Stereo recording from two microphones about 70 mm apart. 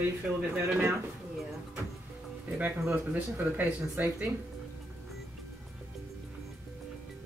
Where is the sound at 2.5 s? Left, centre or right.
Right.